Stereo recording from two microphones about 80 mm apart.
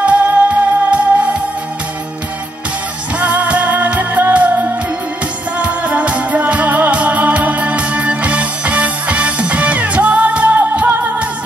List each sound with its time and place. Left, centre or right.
0.0 s music: centre
3.2 s music: centre
5.6 s music: centre